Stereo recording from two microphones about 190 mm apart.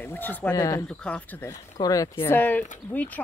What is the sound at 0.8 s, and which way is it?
A woman's voice, 5° left (ahead or behind).